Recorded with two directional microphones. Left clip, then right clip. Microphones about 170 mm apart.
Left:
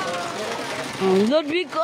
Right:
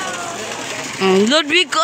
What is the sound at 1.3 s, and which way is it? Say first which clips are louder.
Speech: right 7 dB; 5° right (ahead or behind).